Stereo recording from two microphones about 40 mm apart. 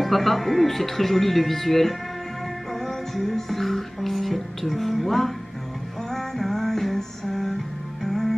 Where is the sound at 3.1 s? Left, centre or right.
Centre.